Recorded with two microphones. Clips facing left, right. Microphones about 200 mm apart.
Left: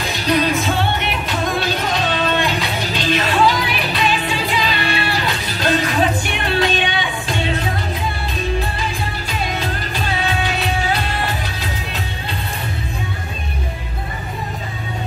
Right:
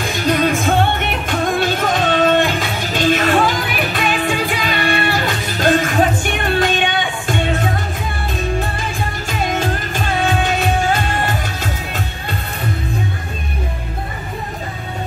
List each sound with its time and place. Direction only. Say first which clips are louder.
0.0 s music: right 2 dB; 50° right (ahead or behind)
9.3 s music: right 6 dB; 50° right (ahead or behind)